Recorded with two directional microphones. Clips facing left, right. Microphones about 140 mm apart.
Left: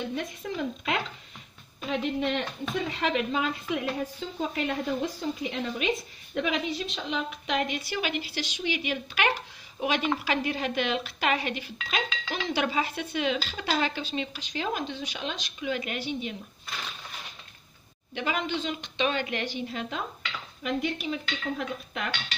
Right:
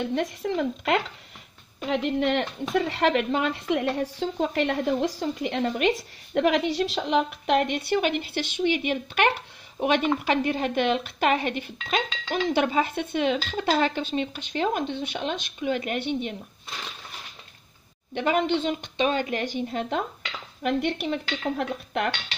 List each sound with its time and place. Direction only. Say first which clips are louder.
0.1 s speech: right 7 dB; 75° right (ahead or behind); by 16.3 s 60° right (ahead or behind)
18.1 s speech: right 7 dB; 50° right (ahead or behind)
20.6 s speech: right 4 dB; 70° right (ahead or behind)